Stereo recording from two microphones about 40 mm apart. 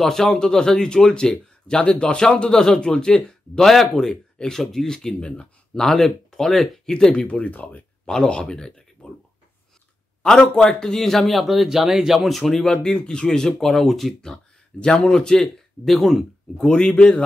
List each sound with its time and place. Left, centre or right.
0.0 s a man's voice: centre
3.3 s speech: centre
5.9 s speech: centre
7.2 s speech: left
8.1 s speech: left
10.4 s speech: centre
12.2 s speech: centre
12.7 s speech: left; by 14.3 s centre
14.3 s a sound: left
15.0 s speech: centre
16.6 s a man's voice: left